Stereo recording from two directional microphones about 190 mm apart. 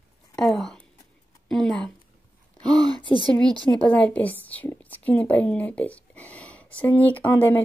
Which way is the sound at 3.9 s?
10° left (ahead or behind).